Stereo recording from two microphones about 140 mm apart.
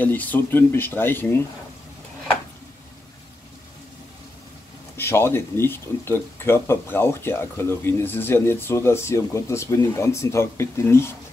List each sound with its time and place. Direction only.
0.0 s speech: 10° left (ahead or behind)
4.9 s speech: 15° left (ahead or behind)